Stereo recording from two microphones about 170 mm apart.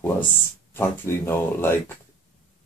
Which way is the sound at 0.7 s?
15° left (ahead or behind).